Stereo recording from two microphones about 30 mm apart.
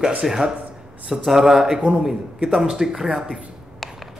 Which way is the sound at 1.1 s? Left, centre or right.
Centre.